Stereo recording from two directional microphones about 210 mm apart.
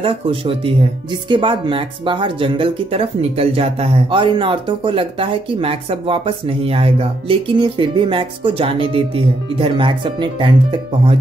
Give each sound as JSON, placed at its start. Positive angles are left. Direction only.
{"t": 0.0, "sound": "speech", "side_deg": -25}